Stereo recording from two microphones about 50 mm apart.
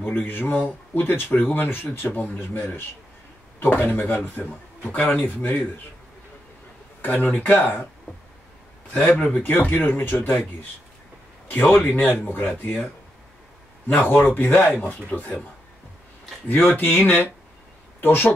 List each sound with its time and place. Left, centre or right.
0.0 s speech: left
7.0 s speech: left
9.0 s speech: left
9.4 s speech: left
13.8 s speech: left
16.4 s speech: left